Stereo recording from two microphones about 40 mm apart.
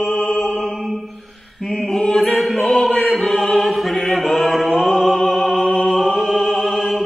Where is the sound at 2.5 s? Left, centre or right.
Centre.